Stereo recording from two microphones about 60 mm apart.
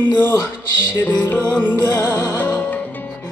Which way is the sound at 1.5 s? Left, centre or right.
Left.